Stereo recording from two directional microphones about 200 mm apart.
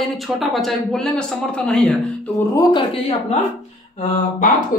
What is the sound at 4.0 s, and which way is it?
Mantra, 40° left (ahead or behind).